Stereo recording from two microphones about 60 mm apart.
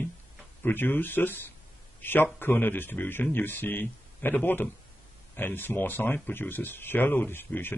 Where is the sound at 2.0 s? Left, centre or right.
Left.